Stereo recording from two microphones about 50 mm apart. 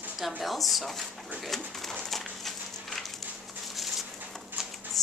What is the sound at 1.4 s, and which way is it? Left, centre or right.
Pigeon, centre.